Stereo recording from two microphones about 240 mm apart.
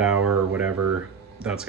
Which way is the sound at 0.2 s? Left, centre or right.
Right.